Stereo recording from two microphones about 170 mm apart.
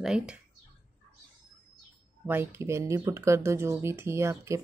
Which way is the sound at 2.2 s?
15° right (ahead or behind).